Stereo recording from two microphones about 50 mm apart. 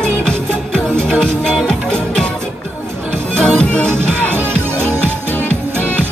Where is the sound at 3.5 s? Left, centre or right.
Left.